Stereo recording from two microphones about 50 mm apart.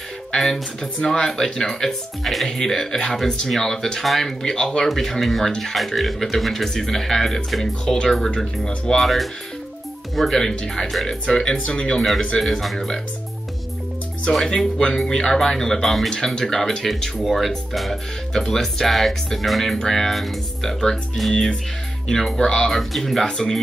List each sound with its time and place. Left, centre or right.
0.3 s music: centre
1.0 s speech: centre
10.9 s speech: centre
11.2 s speech: centre
12.4 s speech: centre
14.3 s speech: centre